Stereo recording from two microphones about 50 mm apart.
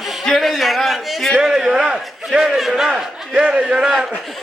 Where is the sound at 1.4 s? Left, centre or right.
Centre.